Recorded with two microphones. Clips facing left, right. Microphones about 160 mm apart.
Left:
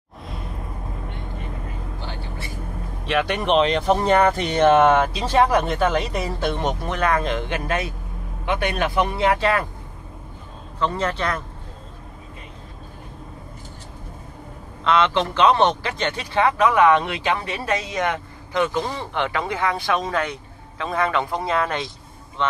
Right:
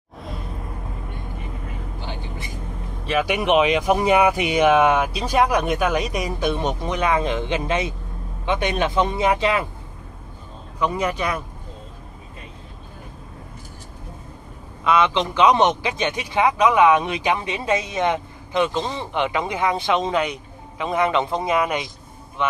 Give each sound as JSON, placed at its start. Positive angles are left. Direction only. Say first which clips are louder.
{"t": 2.0, "sound": "vehicle", "louder": "right 1 dB", "side_deg": -15}
{"t": 3.1, "sound": "speech", "louder": "right 1 dB", "side_deg": -5}
{"t": 10.8, "sound": "speech", "louder": "right 1 dB", "side_deg": -10}
{"t": 14.9, "sound": "speech", "louder": "even", "side_deg": -15}